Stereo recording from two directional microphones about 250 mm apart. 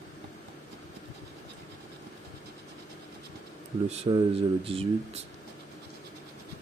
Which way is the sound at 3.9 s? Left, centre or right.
Right.